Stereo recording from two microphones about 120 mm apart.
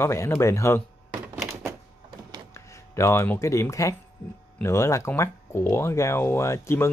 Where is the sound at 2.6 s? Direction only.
25° left (ahead or behind).